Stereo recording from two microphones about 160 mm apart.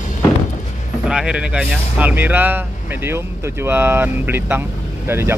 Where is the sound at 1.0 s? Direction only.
5° right (ahead or behind).